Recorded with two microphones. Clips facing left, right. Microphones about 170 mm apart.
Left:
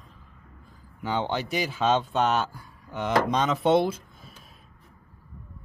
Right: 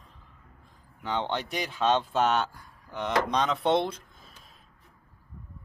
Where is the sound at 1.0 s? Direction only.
5° left (ahead or behind).